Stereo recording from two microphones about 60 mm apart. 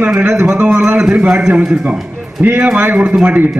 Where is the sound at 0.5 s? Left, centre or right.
Right.